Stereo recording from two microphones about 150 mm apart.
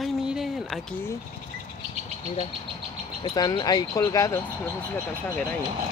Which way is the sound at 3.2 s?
30° left (ahead or behind).